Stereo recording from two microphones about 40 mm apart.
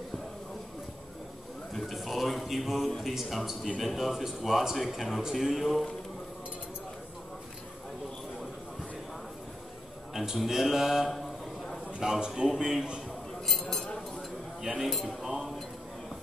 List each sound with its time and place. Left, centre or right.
1.7 s a sound: centre
3.0 s a man's voice: centre
10.1 s speech: centre
13.5 s chink: centre
14.6 s speech: centre
14.9 s a man's voice: centre